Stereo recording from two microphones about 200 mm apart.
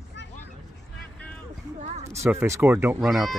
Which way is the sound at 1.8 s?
30° right (ahead or behind).